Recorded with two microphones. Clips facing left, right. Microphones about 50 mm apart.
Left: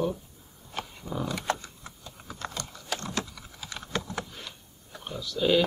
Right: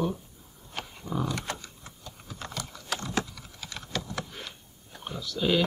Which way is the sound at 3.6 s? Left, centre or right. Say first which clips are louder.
Left 2 dB; left.